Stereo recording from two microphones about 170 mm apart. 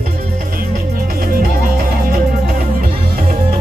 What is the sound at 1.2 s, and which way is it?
Music, 55° right (ahead or behind).